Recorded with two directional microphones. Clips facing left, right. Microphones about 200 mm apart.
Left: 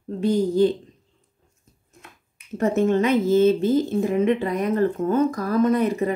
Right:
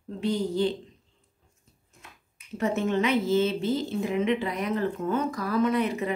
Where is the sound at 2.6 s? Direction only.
45° left (ahead or behind).